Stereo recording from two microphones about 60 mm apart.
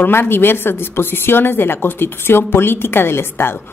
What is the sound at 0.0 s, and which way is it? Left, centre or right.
A woman's voice, left.